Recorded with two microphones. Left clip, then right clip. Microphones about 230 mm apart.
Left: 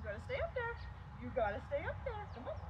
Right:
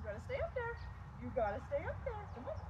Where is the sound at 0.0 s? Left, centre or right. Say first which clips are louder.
Left 1 dB; centre.